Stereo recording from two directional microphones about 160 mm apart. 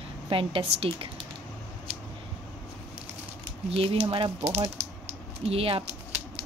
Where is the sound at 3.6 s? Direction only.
35° right (ahead or behind).